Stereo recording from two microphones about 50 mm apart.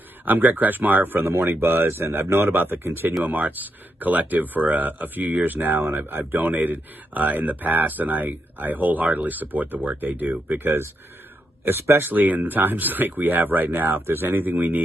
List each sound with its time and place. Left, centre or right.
0.2 s speech: right
1.9 s speech: right
11.8 s speech: right
12.1 s speech: right